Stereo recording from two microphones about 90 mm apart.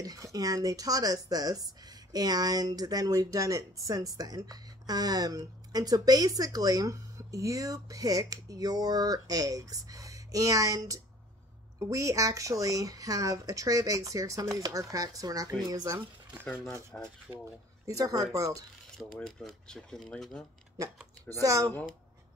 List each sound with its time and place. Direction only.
0.0 s a woman's voice: 40° right (ahead or behind)
16.9 s speech: centre (ahead or behind)
17.3 s speech: 15° right (ahead or behind)
17.8 s a woman's voice: 40° right (ahead or behind)
19.2 s speech: 5° left (ahead or behind)
21.3 s a woman's voice: 40° right (ahead or behind)